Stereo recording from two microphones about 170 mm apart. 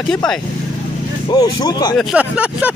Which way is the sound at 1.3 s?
20° left (ahead or behind).